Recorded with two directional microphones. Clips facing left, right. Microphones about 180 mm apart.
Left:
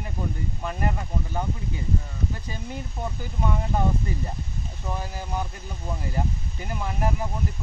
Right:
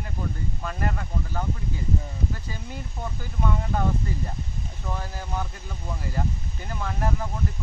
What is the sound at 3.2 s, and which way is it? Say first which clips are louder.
Speech: even; 20° left (ahead or behind).